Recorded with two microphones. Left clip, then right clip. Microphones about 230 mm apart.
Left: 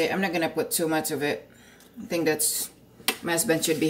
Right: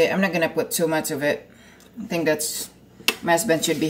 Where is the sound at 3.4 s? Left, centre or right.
Centre.